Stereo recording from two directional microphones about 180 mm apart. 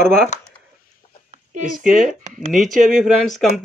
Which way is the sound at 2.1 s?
45° right (ahead or behind).